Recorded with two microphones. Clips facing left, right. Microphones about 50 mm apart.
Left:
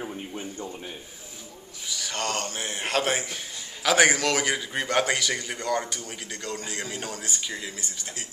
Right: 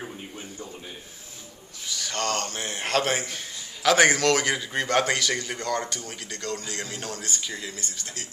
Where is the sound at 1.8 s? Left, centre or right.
Centre.